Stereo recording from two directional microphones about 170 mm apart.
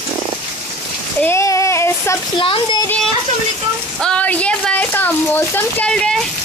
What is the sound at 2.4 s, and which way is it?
Speech, 30° left (ahead or behind).